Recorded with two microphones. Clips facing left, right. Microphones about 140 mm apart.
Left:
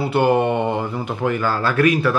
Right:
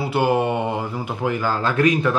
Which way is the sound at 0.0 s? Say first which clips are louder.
Left 3 dB; 5° right (ahead or behind).